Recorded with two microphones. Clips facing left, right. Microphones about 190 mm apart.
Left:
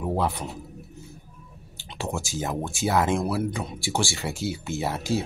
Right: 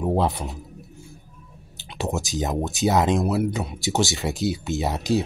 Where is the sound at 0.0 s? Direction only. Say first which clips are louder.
Right 4 dB; 20° right (ahead or behind).